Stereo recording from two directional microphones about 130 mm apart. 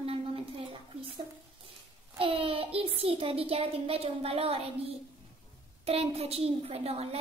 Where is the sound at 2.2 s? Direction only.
45° right (ahead or behind).